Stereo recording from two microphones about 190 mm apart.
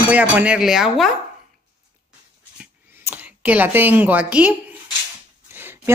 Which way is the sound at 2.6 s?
10° right (ahead or behind).